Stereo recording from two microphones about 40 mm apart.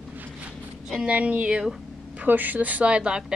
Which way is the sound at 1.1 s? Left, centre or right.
Right.